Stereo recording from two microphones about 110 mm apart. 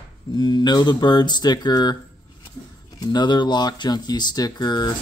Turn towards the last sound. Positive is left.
turn(degrees=40)  # may be behind; listen again after turning